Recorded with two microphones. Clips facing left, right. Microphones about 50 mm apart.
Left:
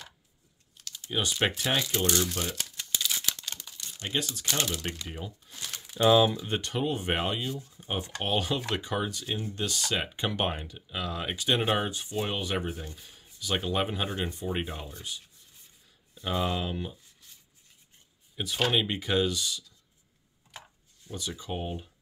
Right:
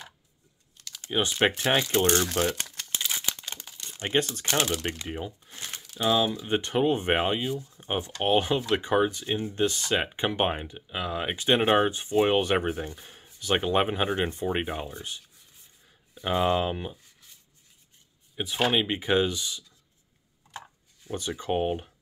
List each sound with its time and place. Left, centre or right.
1.1 s speech: right
2.2 s speech: right
2.9 s a sound: right
3.2 s crumpling: centre; by 4.8 s right
4.8 s speech: right
5.9 s speech: centre
6.3 s speech: centre
7.4 s speech: centre
8.2 s speech: right
16.2 s speech: right
18.3 s speech: centre
21.4 s speech: right